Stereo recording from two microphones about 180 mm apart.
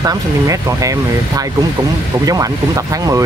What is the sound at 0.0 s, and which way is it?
Speech, 20° right (ahead or behind).